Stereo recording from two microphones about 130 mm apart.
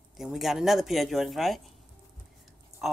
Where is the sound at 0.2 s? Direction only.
Centre (ahead or behind).